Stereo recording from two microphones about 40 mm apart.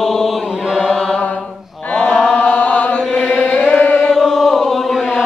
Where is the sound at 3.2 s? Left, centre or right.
Right.